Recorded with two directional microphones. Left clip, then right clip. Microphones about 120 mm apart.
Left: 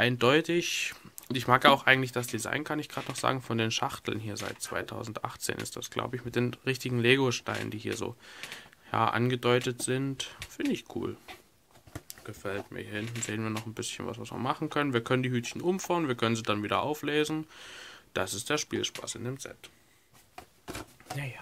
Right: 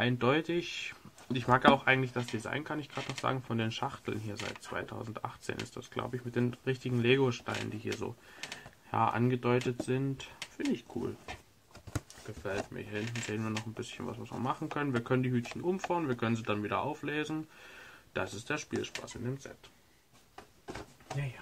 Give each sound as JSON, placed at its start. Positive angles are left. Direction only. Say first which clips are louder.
{"t": 0.0, "sound": "speech", "louder": "left 5 dB", "side_deg": 25}
{"t": 12.4, "sound": "speech", "louder": "left 1 dB", "side_deg": 30}